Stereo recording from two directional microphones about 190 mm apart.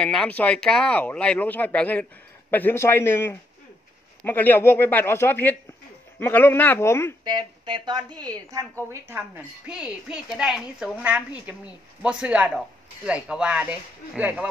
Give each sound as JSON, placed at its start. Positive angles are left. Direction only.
{"t": 0.0, "sound": "speech", "side_deg": 5}
{"t": 7.2, "sound": "speech", "side_deg": -25}